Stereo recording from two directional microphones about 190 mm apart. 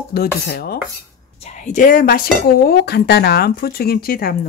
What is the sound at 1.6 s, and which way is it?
Speech, 40° left (ahead or behind).